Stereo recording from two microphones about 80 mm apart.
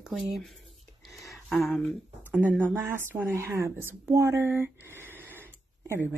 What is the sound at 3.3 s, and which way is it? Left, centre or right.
Speech, right.